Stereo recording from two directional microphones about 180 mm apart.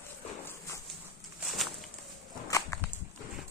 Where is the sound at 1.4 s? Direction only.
Centre (ahead or behind).